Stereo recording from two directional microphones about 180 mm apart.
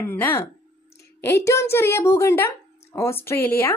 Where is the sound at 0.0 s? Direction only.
10° left (ahead or behind).